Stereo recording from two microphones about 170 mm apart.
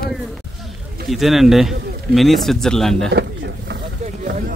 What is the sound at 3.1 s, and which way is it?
Pigeon, 75° right (ahead or behind).